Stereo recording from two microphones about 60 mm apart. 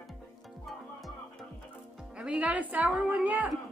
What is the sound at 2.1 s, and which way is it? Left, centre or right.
A woman's voice, centre.